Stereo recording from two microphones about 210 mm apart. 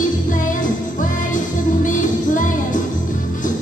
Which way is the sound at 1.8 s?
40° left (ahead or behind).